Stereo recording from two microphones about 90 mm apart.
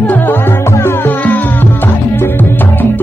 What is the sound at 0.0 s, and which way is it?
Music, 20° left (ahead or behind).